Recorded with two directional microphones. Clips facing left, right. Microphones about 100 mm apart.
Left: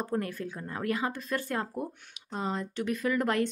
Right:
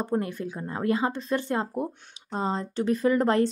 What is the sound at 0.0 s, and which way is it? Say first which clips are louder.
Speech: right 4 dB; 20° right (ahead or behind).